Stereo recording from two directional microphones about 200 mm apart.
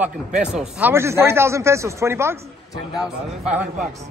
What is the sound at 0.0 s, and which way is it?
Speech, 5° right (ahead or behind).